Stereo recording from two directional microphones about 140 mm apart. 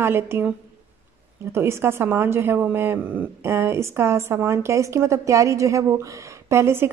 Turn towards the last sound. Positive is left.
turn(degrees=-20)  # may be behind; listen again after turning